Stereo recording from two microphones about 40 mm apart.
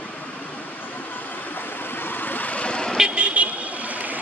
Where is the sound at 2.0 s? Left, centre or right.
Left.